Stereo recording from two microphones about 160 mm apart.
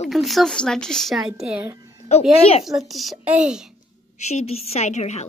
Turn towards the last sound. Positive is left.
turn(degrees=45)  # may be behind; listen again after turning